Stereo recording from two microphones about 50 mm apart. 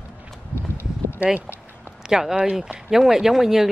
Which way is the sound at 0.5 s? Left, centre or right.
Left.